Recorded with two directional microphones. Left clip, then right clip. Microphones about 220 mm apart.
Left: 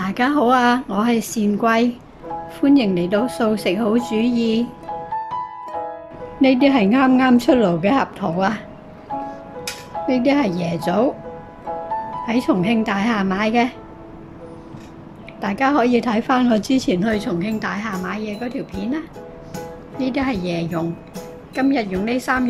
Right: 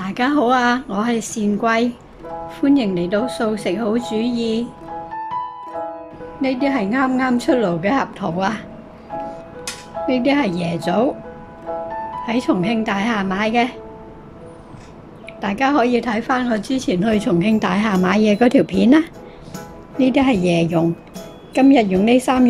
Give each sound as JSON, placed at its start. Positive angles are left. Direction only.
{"t": 0.0, "sound": "a woman's voice", "side_deg": 0}
{"t": 6.4, "sound": "a woman's voice", "side_deg": 10}
{"t": 10.0, "sound": "a woman's voice", "side_deg": 0}
{"t": 12.3, "sound": "a woman's voice", "side_deg": 0}
{"t": 15.4, "sound": "a woman's voice", "side_deg": 0}
{"t": 20.0, "sound": "a woman's voice", "side_deg": -10}